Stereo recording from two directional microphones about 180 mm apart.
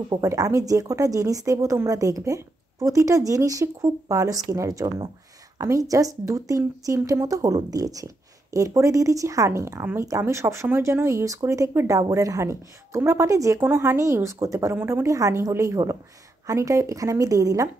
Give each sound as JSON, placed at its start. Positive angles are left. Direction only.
{"t": 0.1, "sound": "a woman's voice", "side_deg": -20}